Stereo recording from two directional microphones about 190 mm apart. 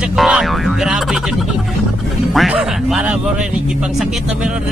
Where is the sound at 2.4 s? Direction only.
5° right (ahead or behind).